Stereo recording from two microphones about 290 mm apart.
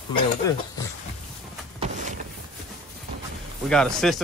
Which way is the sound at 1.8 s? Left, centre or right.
Right.